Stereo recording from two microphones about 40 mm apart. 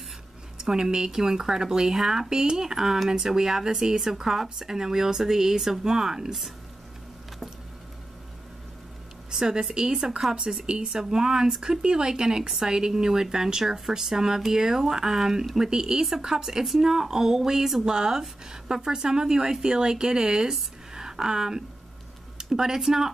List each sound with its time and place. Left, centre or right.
0.6 s speech: centre
9.3 s speech: centre